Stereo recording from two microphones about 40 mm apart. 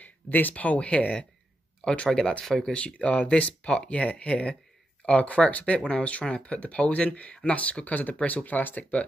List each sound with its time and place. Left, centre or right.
0.0 s speech: left
1.8 s speech: left
2.7 s speech: left
5.8 s speech: left